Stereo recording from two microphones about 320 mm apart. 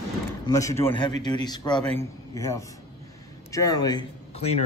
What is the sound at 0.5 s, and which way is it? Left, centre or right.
A man's voice, centre.